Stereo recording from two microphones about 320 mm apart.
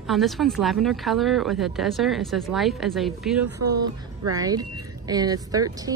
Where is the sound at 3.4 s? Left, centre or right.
Right.